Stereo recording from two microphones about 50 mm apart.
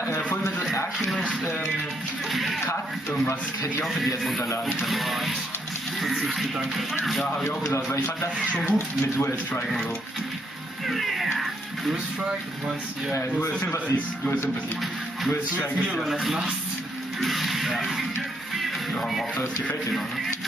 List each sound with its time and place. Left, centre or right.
2.3 s speech: centre
3.8 s speech: centre
7.4 s speech: left
8.7 s speech: left
10.9 s music: centre
16.0 s speech: centre